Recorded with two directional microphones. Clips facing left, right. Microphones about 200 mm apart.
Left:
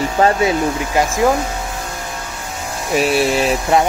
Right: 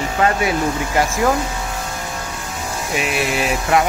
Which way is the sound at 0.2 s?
25° left (ahead or behind).